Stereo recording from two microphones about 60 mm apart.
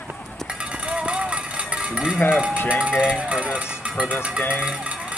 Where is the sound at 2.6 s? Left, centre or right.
Centre.